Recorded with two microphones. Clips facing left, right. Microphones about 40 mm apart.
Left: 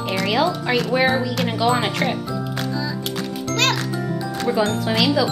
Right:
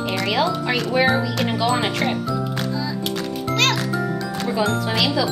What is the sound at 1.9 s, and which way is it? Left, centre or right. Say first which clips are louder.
Music: right 1 dB; centre.